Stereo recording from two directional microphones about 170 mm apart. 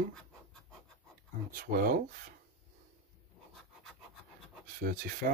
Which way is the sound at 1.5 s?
55° right (ahead or behind).